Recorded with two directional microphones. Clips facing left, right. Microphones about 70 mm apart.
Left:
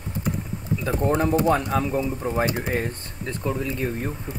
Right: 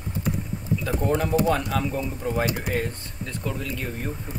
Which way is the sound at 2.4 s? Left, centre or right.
Left.